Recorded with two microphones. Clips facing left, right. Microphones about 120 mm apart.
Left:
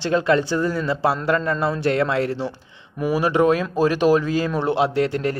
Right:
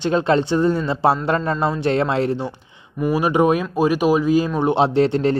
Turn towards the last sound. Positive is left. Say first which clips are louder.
# right 4 dB
turn(degrees=-25)  # may be behind; listen again after turning